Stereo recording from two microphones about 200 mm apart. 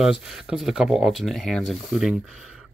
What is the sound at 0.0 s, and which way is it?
Speech, centre (ahead or behind).